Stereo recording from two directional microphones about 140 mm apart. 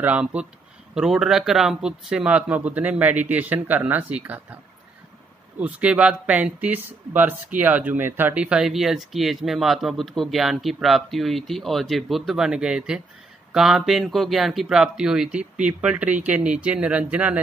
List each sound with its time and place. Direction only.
0.0 s a man's voice: 10° right (ahead or behind)
5.6 s a man's voice: 10° right (ahead or behind)